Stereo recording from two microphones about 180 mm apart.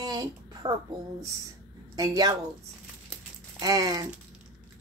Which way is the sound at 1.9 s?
20° right (ahead or behind).